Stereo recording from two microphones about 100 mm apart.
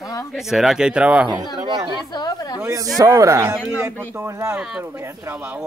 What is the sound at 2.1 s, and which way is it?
Chatter, 40° left (ahead or behind).